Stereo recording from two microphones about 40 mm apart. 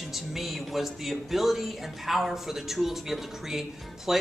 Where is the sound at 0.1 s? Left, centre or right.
Centre.